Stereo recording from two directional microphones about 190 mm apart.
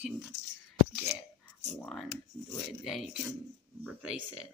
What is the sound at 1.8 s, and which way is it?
Speech, 5° left (ahead or behind).